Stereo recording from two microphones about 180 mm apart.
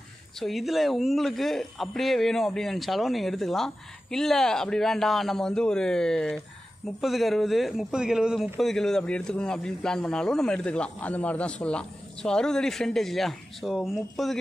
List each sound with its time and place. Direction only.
0.4 s a man's voice: centre (ahead or behind)